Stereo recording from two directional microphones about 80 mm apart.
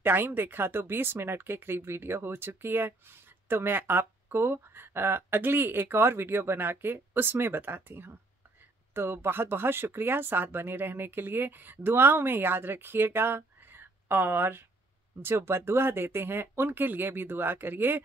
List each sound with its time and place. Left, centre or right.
0.0 s speech: right